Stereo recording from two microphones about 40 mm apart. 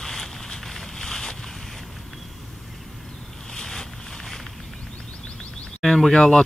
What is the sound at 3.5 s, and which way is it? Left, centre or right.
Vehicle, centre.